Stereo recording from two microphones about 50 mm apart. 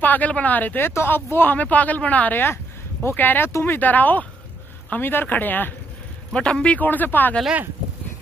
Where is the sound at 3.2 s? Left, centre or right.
Left.